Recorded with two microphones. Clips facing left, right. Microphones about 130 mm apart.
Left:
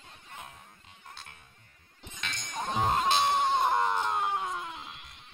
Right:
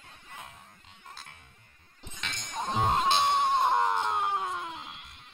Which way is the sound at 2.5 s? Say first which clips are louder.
Right 1 dB; centre (ahead or behind).